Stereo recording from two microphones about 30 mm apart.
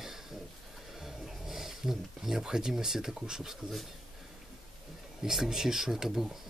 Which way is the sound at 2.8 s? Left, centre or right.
Centre.